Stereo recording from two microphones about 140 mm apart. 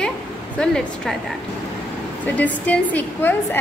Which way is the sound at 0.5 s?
5° left (ahead or behind).